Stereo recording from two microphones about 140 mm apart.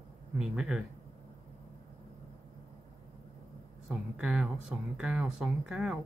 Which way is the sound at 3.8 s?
5° right (ahead or behind).